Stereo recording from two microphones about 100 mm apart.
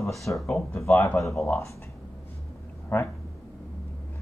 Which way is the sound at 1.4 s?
20° left (ahead or behind).